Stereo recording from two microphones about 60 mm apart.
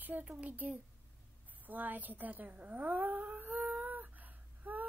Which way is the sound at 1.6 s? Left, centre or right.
Right.